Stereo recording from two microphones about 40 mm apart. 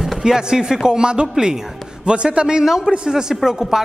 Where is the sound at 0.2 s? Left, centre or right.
Centre.